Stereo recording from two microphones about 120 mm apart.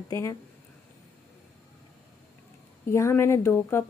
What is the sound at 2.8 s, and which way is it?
A woman's voice, 20° left (ahead or behind).